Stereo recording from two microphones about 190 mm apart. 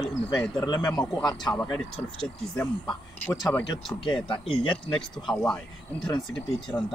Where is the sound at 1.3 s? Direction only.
5° left (ahead or behind).